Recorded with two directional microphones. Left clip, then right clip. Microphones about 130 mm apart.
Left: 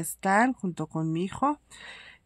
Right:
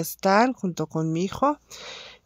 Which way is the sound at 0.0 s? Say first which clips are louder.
Right 4 dB; 35° right (ahead or behind).